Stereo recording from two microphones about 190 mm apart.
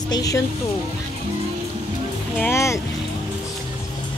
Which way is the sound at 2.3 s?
10° left (ahead or behind).